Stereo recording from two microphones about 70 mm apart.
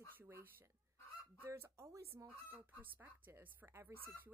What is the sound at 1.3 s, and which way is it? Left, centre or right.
Speech, right.